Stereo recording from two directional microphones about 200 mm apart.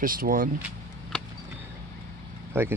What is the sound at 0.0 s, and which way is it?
Speech, 45° right (ahead or behind).